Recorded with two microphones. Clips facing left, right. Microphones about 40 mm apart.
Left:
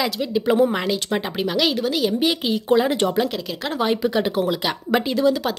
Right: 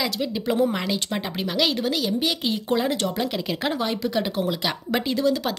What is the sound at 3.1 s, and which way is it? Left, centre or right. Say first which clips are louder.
Speech: left 4 dB; centre.